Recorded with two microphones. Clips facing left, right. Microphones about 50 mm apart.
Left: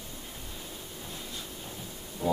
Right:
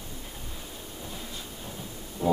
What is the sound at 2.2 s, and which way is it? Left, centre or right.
Music, centre.